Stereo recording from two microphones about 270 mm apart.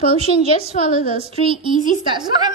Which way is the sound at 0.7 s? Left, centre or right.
Right.